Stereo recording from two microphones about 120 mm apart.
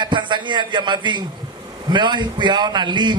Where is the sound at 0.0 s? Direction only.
40° right (ahead or behind).